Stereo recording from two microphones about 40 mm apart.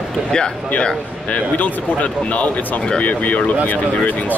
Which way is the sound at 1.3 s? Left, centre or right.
Left.